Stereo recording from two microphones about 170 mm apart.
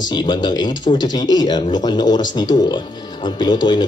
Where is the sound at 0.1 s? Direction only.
25° left (ahead or behind).